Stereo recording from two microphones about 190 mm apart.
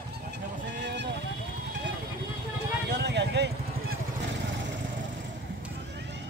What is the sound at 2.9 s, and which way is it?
Vehicle, 65° right (ahead or behind).